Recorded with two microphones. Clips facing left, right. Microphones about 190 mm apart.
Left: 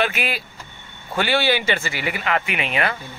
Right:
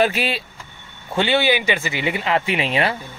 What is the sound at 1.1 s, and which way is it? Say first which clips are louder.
Speech: right 2 dB; 20° right (ahead or behind).